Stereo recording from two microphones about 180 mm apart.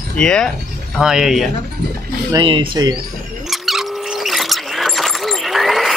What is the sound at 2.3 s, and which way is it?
Speech, 30° right (ahead or behind).